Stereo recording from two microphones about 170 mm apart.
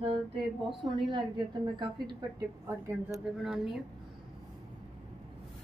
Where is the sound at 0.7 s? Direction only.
25° right (ahead or behind).